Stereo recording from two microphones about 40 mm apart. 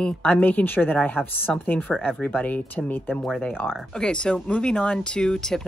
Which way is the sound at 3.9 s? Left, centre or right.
Left.